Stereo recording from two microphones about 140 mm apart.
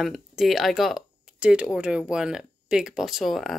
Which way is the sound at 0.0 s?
Centre (ahead or behind).